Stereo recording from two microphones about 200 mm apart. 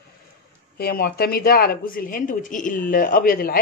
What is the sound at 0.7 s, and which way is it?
A woman's voice, 50° left (ahead or behind).